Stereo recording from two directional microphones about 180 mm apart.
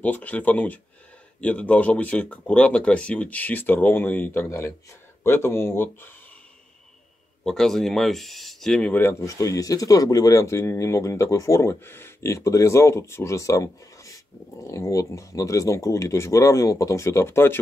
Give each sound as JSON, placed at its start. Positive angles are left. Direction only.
{"t": 0.0, "sound": "speech", "side_deg": 10}
{"t": 7.4, "sound": "speech", "side_deg": 0}